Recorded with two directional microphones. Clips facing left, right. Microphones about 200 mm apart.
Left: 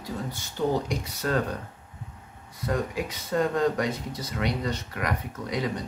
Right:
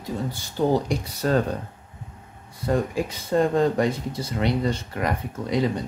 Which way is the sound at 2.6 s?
30° right (ahead or behind).